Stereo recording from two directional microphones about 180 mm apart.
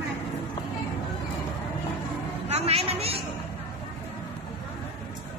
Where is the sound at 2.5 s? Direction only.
35° right (ahead or behind).